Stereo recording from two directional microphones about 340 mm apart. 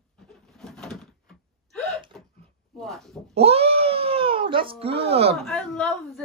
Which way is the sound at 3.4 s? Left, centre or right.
Centre.